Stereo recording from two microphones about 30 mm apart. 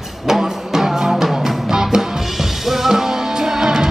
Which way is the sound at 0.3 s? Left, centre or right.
Centre.